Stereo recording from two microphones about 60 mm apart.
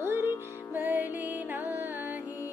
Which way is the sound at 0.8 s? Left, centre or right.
Right.